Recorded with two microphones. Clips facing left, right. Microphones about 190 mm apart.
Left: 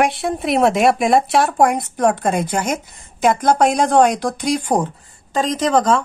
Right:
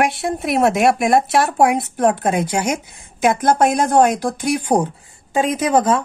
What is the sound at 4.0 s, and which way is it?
Speech, 5° right (ahead or behind).